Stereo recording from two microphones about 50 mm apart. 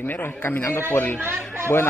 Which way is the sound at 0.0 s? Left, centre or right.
Left.